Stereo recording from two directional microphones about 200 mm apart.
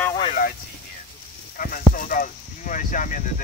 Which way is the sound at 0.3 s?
45° left (ahead or behind).